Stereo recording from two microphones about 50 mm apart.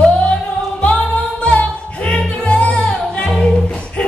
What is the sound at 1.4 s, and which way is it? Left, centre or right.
Music, left.